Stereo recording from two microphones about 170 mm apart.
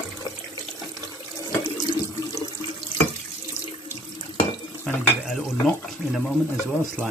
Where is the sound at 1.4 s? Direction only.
20° left (ahead or behind).